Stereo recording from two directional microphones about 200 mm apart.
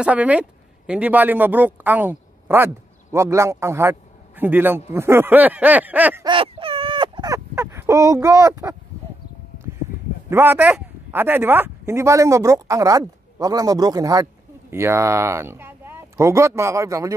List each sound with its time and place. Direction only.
0.0 s a man's voice: 5° right (ahead or behind)
6.2 s a sound: 25° right (ahead or behind)
10.3 s a man's voice: 10° right (ahead or behind)